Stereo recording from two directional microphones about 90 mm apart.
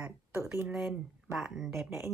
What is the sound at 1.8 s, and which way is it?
Speech, 25° right (ahead or behind).